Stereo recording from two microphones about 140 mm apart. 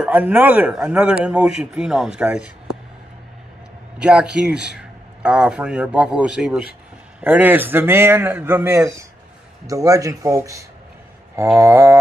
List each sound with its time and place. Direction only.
0.0 s speech: 10° right (ahead or behind)
4.0 s speech: 10° right (ahead or behind)